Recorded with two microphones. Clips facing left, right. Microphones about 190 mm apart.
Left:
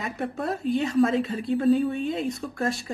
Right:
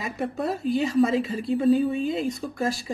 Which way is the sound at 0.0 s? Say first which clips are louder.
Right 2 dB; centre (ahead or behind).